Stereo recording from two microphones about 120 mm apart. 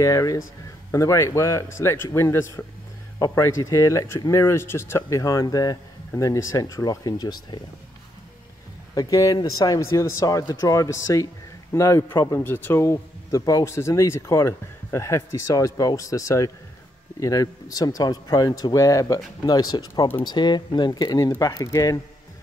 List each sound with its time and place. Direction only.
0.0 s speech: 25° left (ahead or behind)
8.9 s speech: 30° left (ahead or behind)
12.4 s a man's voice: 15° left (ahead or behind)